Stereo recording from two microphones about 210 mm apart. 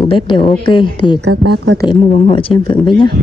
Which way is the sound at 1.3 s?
90° right.